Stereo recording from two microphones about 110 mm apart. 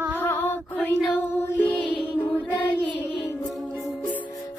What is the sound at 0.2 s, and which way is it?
Music, 20° left (ahead or behind).